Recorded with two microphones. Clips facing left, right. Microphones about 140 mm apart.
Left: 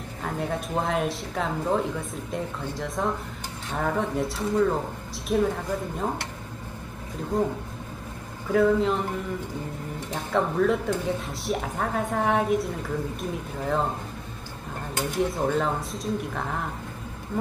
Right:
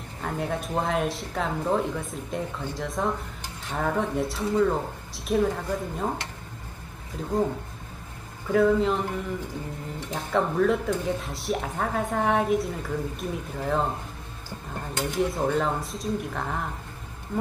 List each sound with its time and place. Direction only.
0.2 s a woman's voice: centre (ahead or behind)
7.3 s a woman's voice: centre (ahead or behind)
10.1 s a woman's voice: centre (ahead or behind)
15.1 s a woman's voice: centre (ahead or behind)